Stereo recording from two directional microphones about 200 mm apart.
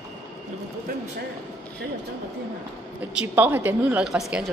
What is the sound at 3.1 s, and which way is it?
Speech, 10° right (ahead or behind).